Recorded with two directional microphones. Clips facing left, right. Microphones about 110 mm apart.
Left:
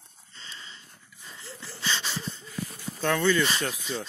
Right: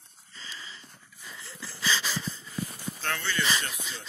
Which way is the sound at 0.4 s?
30° left (ahead or behind).